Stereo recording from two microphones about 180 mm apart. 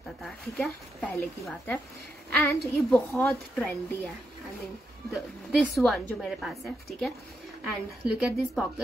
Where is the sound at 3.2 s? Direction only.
Centre (ahead or behind).